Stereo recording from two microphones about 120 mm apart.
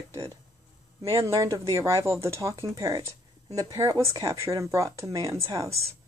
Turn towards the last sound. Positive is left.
turn(degrees=-30)  # may be behind; listen again after turning